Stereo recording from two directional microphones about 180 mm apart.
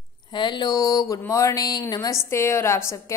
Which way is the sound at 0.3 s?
25° left (ahead or behind).